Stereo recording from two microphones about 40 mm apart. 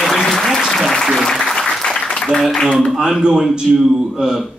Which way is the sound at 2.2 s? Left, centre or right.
Centre.